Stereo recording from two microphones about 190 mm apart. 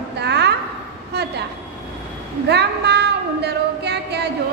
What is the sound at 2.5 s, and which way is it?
Female singing, 60° right (ahead or behind).